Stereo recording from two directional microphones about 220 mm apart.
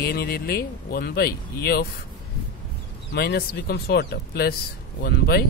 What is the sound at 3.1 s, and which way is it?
Speech, 45° left (ahead or behind).